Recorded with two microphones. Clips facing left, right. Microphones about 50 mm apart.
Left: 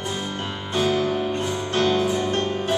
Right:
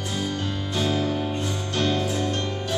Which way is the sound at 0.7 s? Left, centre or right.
Left.